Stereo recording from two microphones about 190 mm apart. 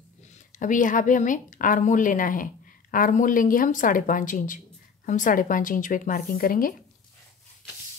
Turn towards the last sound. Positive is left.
turn(degrees=50)  # may be behind; listen again after turning